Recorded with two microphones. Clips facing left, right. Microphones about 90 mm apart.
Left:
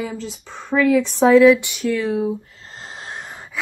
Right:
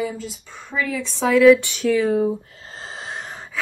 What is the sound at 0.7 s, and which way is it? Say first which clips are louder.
Speech: left 9 dB; 50° left (ahead or behind).